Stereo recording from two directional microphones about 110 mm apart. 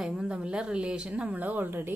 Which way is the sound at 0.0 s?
5° right (ahead or behind).